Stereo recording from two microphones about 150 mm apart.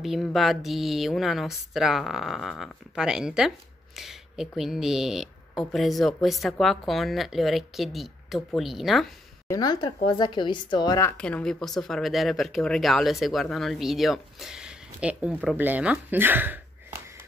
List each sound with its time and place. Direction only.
0.0 s speech: centre (ahead or behind)
9.5 s a woman's voice: 25° left (ahead or behind)
11.1 s speech: 10° left (ahead or behind); by 16.6 s 10° right (ahead or behind)